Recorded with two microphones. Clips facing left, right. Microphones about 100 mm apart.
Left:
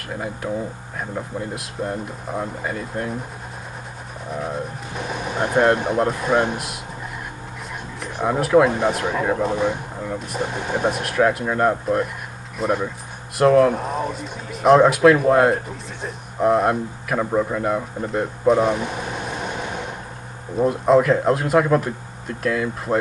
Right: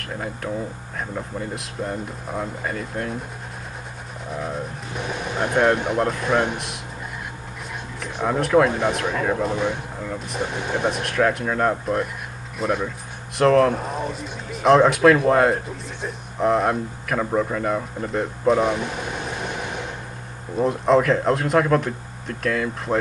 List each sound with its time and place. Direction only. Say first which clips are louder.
0.0 s speech: left 1 dB; 5° left (ahead or behind)
4.3 s speech: left 2 dB; centre (ahead or behind)
5.3 s speech: left 2 dB; 15° left (ahead or behind)
8.0 s speech: left 1 dB; 5° left (ahead or behind)
9.6 s speech: left 2 dB; 15° left (ahead or behind)
10.1 s speech: left 1 dB; centre (ahead or behind)
20.5 s speech: left 2 dB; centre (ahead or behind)